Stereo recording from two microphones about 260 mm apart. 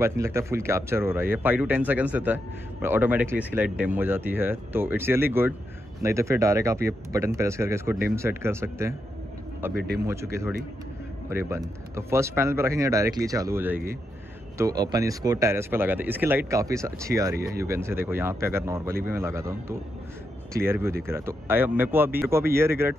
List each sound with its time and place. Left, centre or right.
0.0 s speech: centre
9.9 s speech: centre
20.5 s speech: centre